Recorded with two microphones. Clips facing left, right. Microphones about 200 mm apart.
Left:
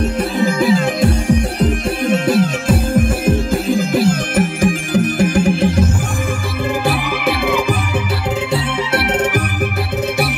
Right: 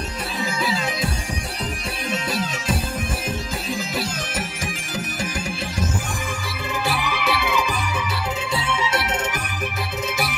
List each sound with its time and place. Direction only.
0.4 s music: 50° left (ahead or behind)
6.9 s music: 55° left (ahead or behind)